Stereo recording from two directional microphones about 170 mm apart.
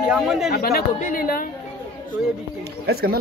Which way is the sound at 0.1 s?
Centre (ahead or behind).